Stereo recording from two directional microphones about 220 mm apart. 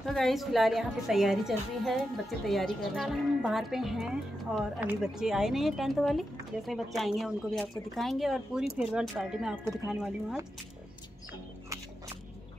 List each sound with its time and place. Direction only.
0.0 s speech: centre (ahead or behind)